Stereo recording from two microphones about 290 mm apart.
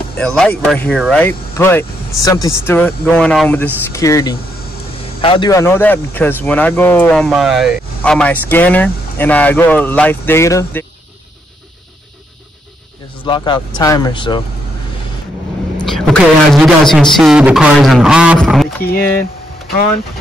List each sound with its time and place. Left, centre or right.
0.2 s speech: centre
13.2 s speech: centre
15.9 s a woman's voice: centre